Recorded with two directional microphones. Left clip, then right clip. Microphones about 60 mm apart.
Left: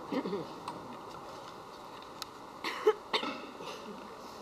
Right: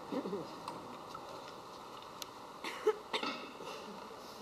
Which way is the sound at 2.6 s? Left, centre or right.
Centre.